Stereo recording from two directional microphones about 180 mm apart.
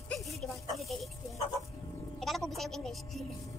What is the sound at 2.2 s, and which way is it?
A woman's voice, centre (ahead or behind).